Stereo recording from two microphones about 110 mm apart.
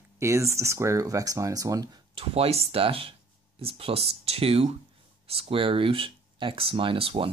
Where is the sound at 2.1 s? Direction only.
60° right (ahead or behind).